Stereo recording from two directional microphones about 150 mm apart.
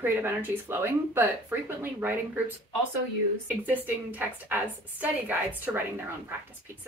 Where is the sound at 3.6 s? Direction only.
10° right (ahead or behind).